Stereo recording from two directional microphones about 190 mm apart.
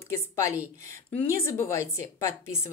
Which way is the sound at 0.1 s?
15° left (ahead or behind).